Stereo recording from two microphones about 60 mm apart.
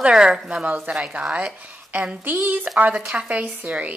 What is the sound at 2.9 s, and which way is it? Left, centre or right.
Speech, centre.